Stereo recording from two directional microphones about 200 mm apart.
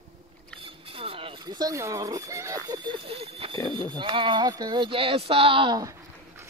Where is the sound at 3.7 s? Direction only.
25° right (ahead or behind).